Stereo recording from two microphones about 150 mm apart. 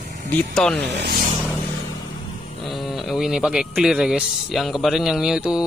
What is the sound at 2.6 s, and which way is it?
Speech, centre (ahead or behind).